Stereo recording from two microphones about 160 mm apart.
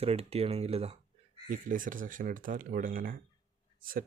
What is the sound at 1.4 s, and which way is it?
Speech, 60° right (ahead or behind).